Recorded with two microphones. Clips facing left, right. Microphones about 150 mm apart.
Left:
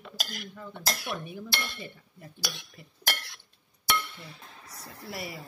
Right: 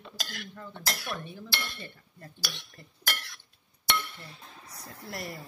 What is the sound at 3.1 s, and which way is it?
Stir, 30° left (ahead or behind).